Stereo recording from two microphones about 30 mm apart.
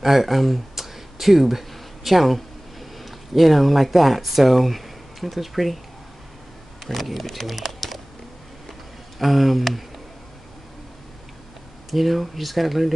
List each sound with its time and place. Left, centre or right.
0.0 s speech: centre
6.9 s speech: centre
9.2 s speech: centre
11.9 s speech: centre